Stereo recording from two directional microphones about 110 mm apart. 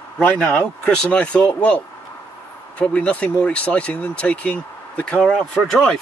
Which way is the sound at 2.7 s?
10° left (ahead or behind).